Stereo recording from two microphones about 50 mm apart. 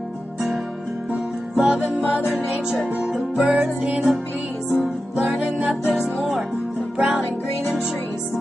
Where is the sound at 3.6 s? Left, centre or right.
Right.